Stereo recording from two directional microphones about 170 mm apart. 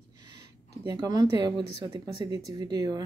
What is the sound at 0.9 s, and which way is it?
Speech, 25° right (ahead or behind).